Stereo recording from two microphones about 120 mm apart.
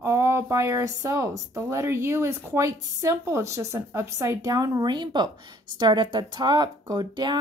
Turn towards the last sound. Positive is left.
turn(degrees=-35)  # may be behind; listen again after turning